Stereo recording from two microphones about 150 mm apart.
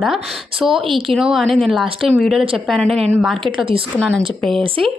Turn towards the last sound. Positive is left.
turn(degrees=5)  # may be behind; listen again after turning